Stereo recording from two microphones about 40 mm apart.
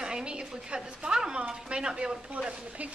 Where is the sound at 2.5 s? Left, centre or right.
Right.